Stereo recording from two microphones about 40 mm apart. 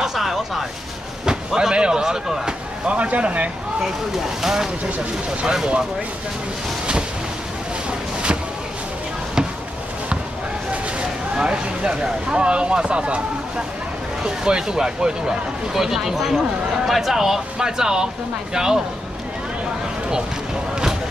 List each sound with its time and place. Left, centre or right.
0.0 s a sound: centre
1.2 s speech: centre
2.9 s speech: right
3.8 s speech: centre
11.3 s speech: right